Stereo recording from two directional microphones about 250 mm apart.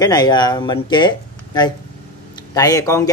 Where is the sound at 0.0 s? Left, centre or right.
Centre.